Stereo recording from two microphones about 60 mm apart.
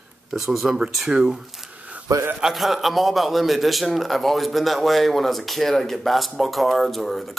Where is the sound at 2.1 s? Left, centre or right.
Right.